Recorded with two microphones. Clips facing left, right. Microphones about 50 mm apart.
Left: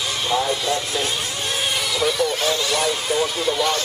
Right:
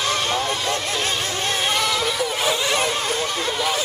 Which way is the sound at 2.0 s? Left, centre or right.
Centre.